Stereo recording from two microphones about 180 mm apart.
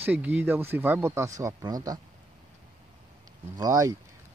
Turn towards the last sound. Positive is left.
turn(degrees=-20)  # may be behind; listen again after turning